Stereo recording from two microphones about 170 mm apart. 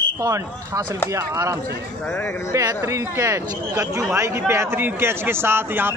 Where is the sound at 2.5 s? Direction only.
20° right (ahead or behind).